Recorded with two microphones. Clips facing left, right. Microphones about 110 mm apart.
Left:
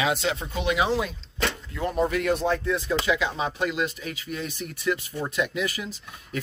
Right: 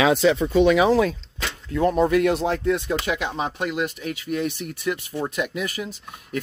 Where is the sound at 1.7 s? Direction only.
85° right; by 6.4 s 55° right (ahead or behind).